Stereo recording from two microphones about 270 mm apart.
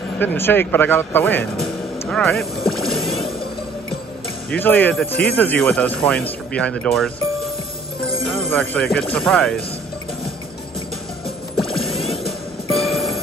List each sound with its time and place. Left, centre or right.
0.2 s speech: centre
4.5 s speech: centre
8.3 s speech: centre
11.9 s music: left
12.2 s music: centre